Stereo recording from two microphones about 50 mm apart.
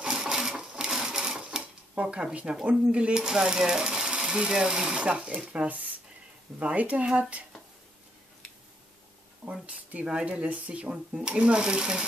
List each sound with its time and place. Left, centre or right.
0.0 s sewing machine: centre
1.4 s dishes: centre
2.6 s speech: right
9.4 s speech: right; by 12.1 s centre